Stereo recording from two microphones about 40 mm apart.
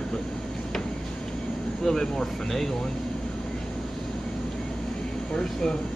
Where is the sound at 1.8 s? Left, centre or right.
Centre.